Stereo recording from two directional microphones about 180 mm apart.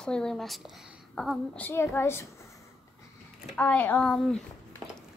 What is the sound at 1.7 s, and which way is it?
Speech, 15° left (ahead or behind).